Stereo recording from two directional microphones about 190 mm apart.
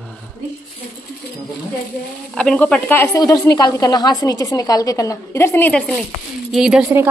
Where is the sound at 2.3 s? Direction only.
5° left (ahead or behind).